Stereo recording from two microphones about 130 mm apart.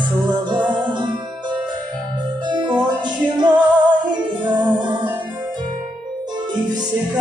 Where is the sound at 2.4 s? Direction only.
35° right (ahead or behind).